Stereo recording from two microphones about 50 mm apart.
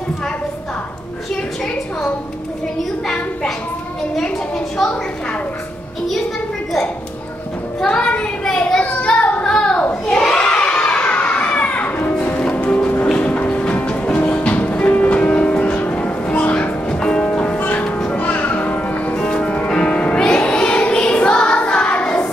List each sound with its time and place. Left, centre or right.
7.8 s child singing: left
9.4 s a sound: centre
10.1 s children playing: centre
12.0 s music: left
17.6 s music: left
18.2 s music: left
19.1 s music: centre
20.2 s choir: left